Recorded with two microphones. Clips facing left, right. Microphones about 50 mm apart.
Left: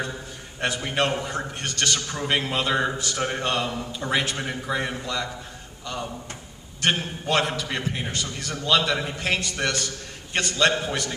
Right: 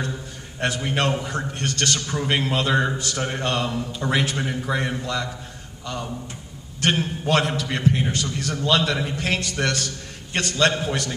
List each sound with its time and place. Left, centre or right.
0.6 s a man's voice: centre